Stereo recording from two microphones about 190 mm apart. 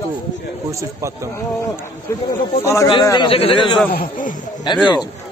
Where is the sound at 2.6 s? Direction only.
15° left (ahead or behind).